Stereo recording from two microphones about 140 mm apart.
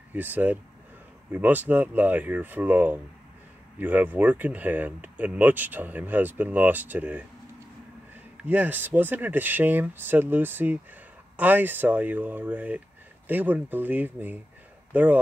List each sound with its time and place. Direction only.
0.1 s speech: 10° right (ahead or behind)
8.5 s speech: 15° right (ahead or behind)